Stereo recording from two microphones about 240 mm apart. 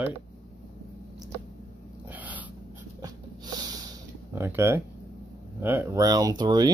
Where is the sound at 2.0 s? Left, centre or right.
Centre.